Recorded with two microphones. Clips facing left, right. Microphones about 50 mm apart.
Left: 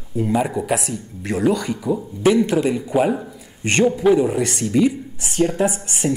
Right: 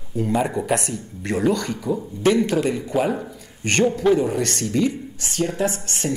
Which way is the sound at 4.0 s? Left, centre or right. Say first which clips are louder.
Left 3 dB; centre.